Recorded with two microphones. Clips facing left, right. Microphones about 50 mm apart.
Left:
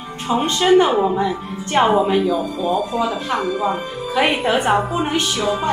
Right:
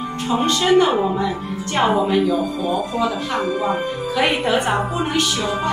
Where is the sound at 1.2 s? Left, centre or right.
Centre.